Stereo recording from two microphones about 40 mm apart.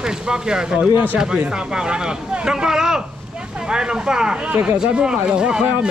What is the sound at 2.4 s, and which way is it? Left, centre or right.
Speech, centre.